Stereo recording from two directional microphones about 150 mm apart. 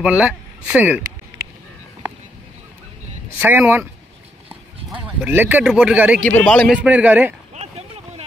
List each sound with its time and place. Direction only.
0.0 s speech: 5° right (ahead or behind)
3.3 s speech: 15° right (ahead or behind)
4.5 s clip-clop: 10° right (ahead or behind)
5.7 s speech: 5° right (ahead or behind)
6.2 s a man's voice: 10° left (ahead or behind)
6.7 s speech: 10° right (ahead or behind)
7.5 s a sound: 45° right (ahead or behind)